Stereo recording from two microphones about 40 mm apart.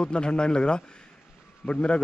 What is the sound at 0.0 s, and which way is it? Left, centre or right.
Speech, left.